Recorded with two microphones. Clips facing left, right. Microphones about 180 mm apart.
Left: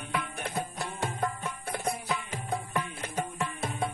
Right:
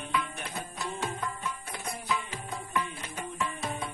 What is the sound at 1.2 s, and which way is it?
Music, 55° left (ahead or behind).